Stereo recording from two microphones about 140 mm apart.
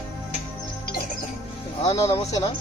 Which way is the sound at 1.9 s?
40° left (ahead or behind).